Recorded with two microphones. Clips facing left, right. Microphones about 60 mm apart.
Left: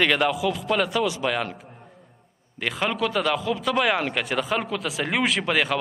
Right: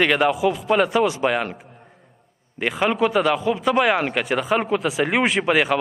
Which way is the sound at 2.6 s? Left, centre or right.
Centre.